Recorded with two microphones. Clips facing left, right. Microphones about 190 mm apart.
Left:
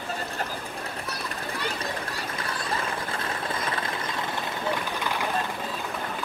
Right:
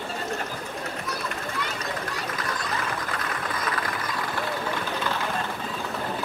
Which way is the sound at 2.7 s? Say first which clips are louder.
Even; 25° left (ahead or behind).